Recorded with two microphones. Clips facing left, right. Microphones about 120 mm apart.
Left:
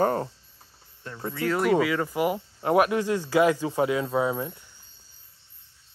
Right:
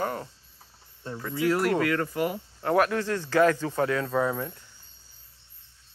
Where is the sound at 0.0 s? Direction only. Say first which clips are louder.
Left 7 dB; 40° left (ahead or behind).